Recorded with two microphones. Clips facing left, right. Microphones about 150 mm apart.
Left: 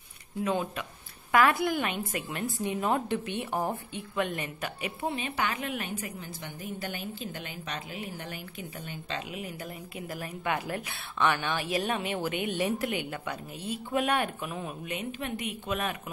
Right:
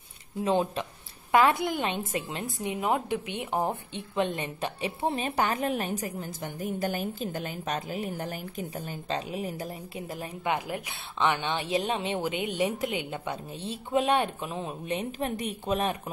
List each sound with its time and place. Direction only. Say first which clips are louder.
0.4 s a woman's voice: right 4 dB; 30° right (ahead or behind)